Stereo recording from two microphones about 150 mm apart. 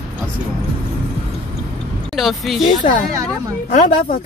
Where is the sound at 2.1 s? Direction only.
Centre (ahead or behind).